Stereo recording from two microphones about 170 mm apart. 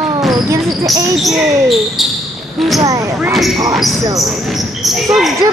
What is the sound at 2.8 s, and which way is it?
Speech, 20° right (ahead or behind).